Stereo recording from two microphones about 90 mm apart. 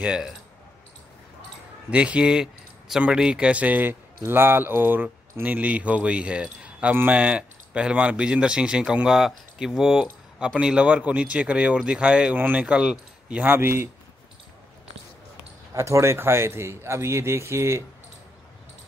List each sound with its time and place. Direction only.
0.0 s speech: 10° right (ahead or behind)
1.9 s speech: 15° right (ahead or behind)
13.4 s speech: 25° right (ahead or behind)
15.7 s speech: 35° right (ahead or behind)